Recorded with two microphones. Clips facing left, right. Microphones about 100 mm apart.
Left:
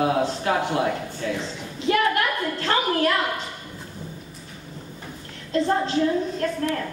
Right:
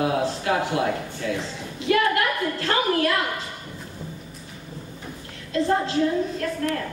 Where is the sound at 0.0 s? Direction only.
35° left (ahead or behind).